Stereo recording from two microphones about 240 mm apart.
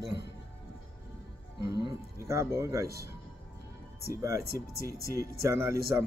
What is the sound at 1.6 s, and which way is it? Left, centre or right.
Speech, centre.